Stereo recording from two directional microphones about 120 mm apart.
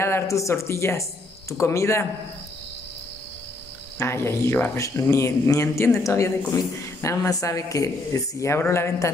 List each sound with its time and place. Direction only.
0.0 s speech: 25° left (ahead or behind)
4.0 s speech: 25° left (ahead or behind)